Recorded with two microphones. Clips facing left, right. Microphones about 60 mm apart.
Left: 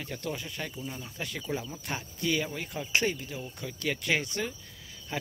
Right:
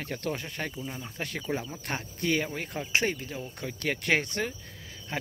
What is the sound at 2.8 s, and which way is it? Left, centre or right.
Speech, right.